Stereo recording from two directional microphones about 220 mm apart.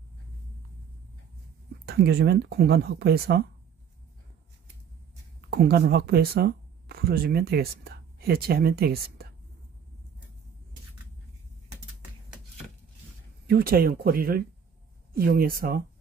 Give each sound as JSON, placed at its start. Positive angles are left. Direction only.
{"t": 1.9, "sound": "speech", "side_deg": -45}
{"t": 5.5, "sound": "speech", "side_deg": -45}
{"t": 13.5, "sound": "speech", "side_deg": -40}